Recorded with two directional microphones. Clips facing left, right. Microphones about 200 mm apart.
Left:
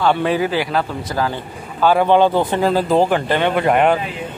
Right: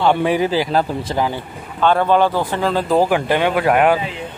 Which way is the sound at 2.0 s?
20° left (ahead or behind).